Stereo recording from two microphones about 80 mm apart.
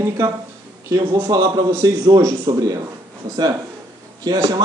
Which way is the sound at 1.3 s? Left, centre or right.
Right.